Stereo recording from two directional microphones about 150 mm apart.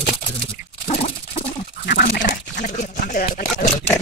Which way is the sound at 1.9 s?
90° left.